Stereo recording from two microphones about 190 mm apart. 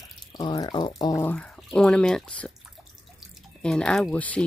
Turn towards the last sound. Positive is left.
turn(degrees=5)  # may be behind; listen again after turning